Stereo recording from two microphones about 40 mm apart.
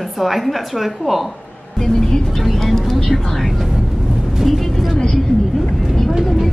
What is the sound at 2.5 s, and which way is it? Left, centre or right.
Music, centre.